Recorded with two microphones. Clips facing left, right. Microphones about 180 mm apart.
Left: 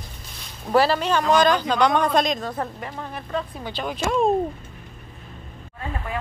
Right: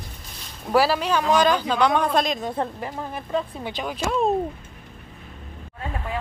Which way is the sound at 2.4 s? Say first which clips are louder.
Right 2 dB; 25° right (ahead or behind).